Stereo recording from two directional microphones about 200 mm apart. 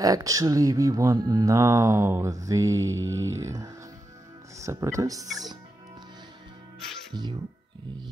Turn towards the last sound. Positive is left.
turn(degrees=-20)  # may be behind; listen again after turning